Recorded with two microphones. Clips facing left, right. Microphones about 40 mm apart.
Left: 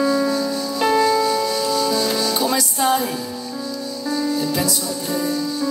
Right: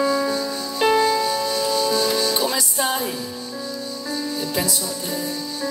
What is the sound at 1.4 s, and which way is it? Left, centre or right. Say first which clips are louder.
Music: left 1 dB; left.